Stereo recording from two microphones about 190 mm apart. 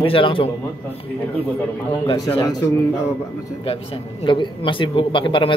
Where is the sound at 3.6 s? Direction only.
30° left (ahead or behind).